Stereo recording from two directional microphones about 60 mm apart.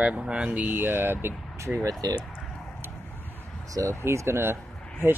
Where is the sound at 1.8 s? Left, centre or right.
Right.